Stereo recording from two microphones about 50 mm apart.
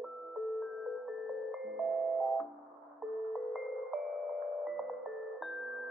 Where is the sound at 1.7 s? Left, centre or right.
Centre.